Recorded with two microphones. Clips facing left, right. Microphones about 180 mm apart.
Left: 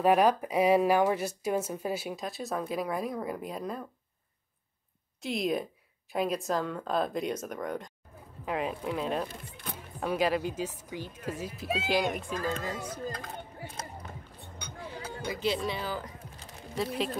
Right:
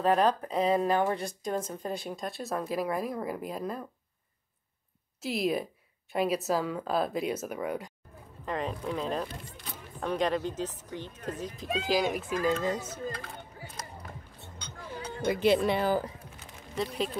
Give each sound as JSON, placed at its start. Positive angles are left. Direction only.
{"t": 0.0, "sound": "speech", "side_deg": 10}
{"t": 5.2, "sound": "speech", "side_deg": -5}
{"t": 8.5, "sound": "speech", "side_deg": 5}
{"t": 12.6, "sound": "speech", "side_deg": -25}
{"t": 14.4, "sound": "music", "side_deg": 10}
{"t": 15.3, "sound": "speech", "side_deg": -55}
{"t": 16.7, "sound": "speech", "side_deg": 0}